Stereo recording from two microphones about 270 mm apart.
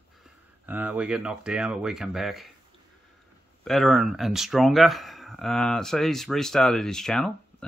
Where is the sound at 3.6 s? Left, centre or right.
Centre.